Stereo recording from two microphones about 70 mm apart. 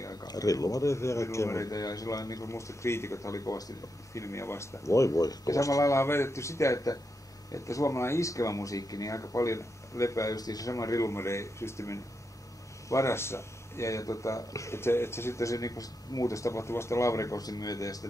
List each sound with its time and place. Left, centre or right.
0.0 s speech: left